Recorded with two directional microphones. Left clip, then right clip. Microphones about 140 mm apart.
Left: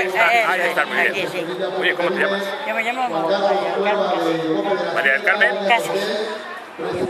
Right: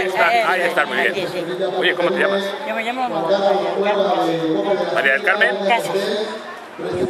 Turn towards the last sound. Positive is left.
turn(degrees=-5)  # may be behind; listen again after turning